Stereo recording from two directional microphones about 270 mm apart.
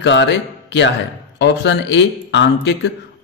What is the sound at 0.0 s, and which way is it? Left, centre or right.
A man's voice, left.